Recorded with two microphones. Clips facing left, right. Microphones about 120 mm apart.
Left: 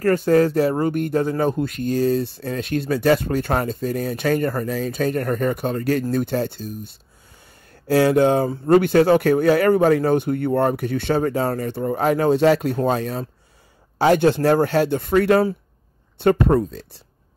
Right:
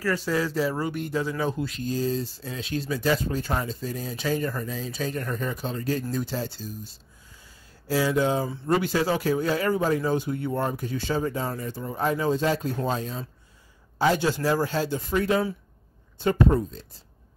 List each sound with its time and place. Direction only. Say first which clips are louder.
0.0 s speech: left 10 dB; 50° left (ahead or behind)
7.4 s a sound: left 8 dB; 65° left (ahead or behind)
8.6 s speech: left 10 dB; 60° left (ahead or behind)